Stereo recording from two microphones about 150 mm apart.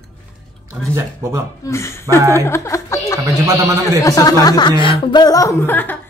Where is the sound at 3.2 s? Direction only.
20° right (ahead or behind).